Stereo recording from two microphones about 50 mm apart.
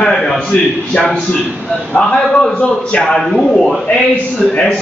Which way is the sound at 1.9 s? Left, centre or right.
Centre.